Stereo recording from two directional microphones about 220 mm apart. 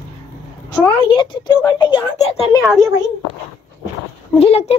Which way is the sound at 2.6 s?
10° right (ahead or behind).